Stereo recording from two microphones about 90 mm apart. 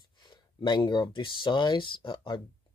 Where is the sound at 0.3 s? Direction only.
60° left (ahead or behind).